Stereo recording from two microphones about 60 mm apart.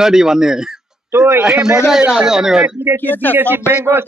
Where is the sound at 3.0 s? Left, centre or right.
Left.